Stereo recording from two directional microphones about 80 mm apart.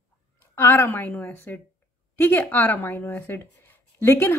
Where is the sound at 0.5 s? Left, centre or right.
Left.